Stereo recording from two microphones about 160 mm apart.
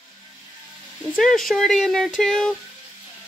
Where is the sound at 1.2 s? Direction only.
Centre (ahead or behind).